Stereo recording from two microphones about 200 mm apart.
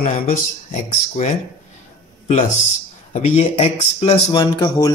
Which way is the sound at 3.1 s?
30° left (ahead or behind).